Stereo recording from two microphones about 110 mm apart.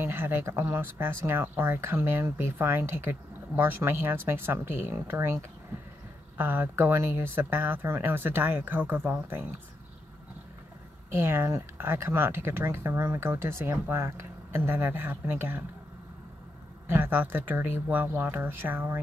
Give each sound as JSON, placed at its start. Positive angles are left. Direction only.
{"t": 0.0, "sound": "speech", "side_deg": -20}
{"t": 11.1, "sound": "speech", "side_deg": -25}
{"t": 16.8, "sound": "speech", "side_deg": -20}